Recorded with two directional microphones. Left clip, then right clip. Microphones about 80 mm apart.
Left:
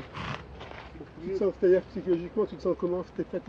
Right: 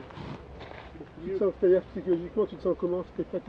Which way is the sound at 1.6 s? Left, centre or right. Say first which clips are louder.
Left 1 dB; centre.